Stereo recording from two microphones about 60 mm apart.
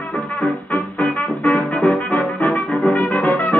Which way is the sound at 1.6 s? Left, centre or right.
Centre.